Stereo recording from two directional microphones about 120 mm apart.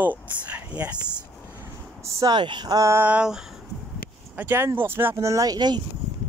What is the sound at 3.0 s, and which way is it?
Speech, 5° right (ahead or behind).